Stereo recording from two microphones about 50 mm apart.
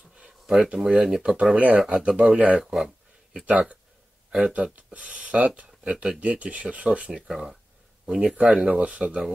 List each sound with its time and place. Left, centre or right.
0.7 s speech: centre
2.6 s speech: centre
3.4 s speech: right
7.2 s speech: centre